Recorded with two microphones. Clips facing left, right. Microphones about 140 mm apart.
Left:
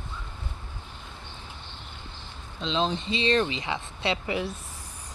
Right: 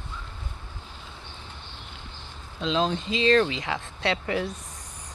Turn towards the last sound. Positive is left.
turn(degrees=5)  # may be behind; listen again after turning